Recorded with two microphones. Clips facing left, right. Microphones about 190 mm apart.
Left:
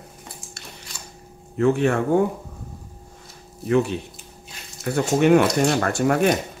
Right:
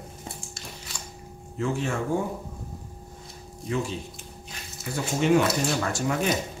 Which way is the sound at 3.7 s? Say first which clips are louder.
Left 9 dB; 60° left (ahead or behind).